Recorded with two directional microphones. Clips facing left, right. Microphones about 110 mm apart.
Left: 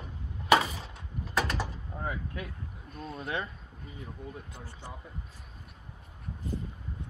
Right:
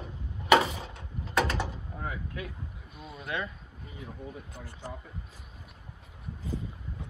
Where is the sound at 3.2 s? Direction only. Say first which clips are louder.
Right 1 dB; 35° left (ahead or behind).